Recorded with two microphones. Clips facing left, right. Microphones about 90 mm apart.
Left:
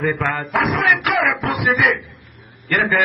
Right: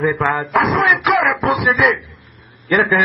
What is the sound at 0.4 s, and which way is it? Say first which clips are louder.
Speech: right 4 dB; centre (ahead or behind).